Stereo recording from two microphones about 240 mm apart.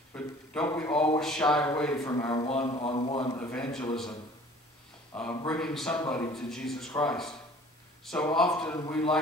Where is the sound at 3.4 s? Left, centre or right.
Centre.